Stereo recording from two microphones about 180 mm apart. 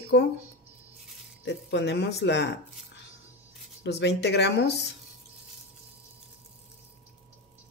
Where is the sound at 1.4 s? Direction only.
80° left.